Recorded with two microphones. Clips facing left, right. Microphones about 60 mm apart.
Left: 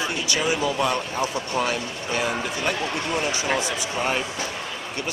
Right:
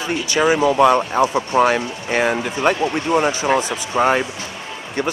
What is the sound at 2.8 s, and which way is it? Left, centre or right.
Speech, right.